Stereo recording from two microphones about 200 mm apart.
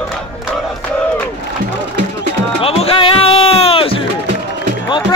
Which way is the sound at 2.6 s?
30° left (ahead or behind).